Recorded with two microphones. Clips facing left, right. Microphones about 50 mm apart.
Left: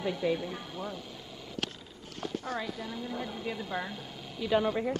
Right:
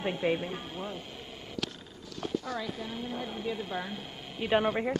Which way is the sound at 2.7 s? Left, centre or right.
Right.